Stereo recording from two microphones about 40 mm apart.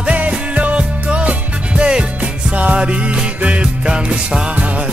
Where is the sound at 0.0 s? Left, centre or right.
Right.